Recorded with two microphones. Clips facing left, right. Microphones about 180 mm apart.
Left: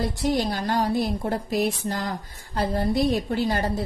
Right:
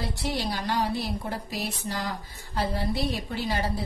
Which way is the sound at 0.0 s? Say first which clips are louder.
Left 7 dB; 45° left (ahead or behind).